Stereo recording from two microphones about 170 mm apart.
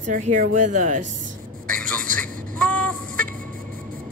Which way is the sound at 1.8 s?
10° left (ahead or behind).